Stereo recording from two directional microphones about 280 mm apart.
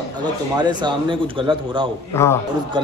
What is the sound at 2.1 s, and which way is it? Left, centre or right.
Speech, centre.